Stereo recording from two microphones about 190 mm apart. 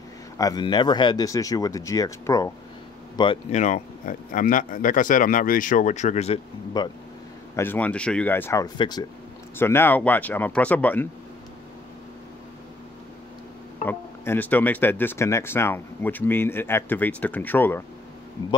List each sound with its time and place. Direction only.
0.4 s speech: 20° left (ahead or behind)
3.5 s speech: 40° left (ahead or behind)
6.8 s speech: 20° left (ahead or behind)
7.5 s speech: 10° left (ahead or behind)
9.6 s speech: 10° left (ahead or behind)
13.8 s speech: 10° left (ahead or behind)